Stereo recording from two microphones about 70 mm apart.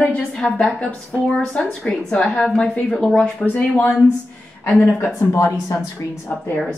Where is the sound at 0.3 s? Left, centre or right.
Centre.